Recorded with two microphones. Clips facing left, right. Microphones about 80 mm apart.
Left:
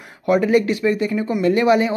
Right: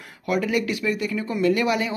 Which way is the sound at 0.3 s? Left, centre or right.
Left.